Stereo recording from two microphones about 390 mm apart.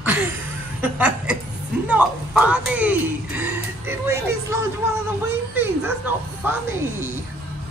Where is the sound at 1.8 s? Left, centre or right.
Centre.